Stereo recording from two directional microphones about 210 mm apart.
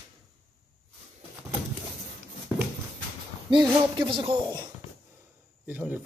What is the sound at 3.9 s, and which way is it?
Speech, 25° right (ahead or behind).